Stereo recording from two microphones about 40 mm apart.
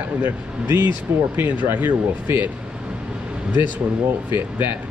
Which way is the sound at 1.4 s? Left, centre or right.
Right.